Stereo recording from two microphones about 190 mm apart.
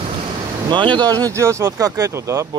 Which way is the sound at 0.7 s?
25° right (ahead or behind).